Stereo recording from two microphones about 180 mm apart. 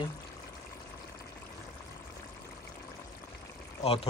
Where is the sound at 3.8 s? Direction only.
35° left (ahead or behind).